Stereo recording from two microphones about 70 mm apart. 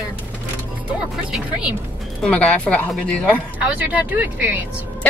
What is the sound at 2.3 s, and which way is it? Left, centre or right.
Music, left.